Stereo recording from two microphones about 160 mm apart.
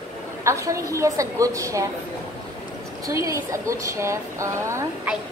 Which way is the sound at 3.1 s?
20° right (ahead or behind).